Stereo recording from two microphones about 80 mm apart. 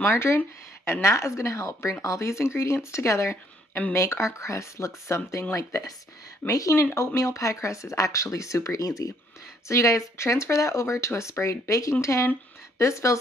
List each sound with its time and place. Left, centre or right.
0.0 s speech: left
6.8 s speech: left
7.2 s speech: left